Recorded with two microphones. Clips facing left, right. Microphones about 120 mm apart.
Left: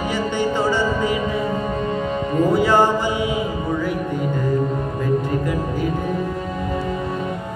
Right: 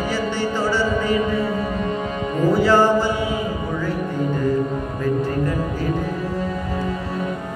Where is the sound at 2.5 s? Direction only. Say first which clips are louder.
Right 2 dB; 15° left (ahead or behind).